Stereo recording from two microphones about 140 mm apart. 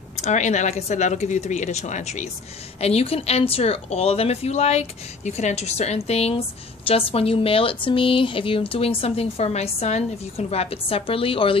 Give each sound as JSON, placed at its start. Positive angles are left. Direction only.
{"t": 0.2, "sound": "speech", "side_deg": 55}
{"t": 2.8, "sound": "a woman's voice", "side_deg": 45}